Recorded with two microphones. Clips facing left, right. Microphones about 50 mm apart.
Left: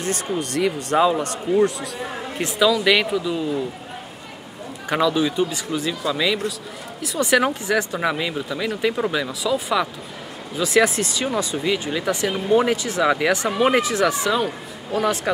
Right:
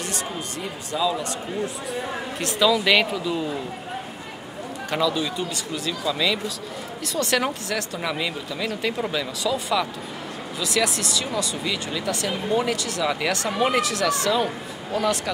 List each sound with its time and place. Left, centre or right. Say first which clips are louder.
0.4 s speech: left 9 dB; left
0.8 s speech: left 4 dB; left
2.8 s speech: left 2 dB; centre
4.8 s speech: left 4 dB; centre
10.6 s speech: left 6 dB; left